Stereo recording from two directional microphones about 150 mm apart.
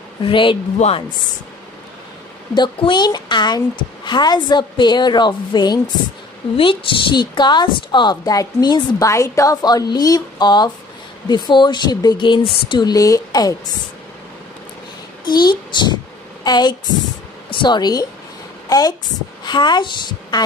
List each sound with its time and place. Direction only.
0.2 s a man's voice: 35° left (ahead or behind)
0.7 s speech: 45° left (ahead or behind)
2.5 s a woman's voice: 30° left (ahead or behind)
15.2 s a child's voice: 30° left (ahead or behind)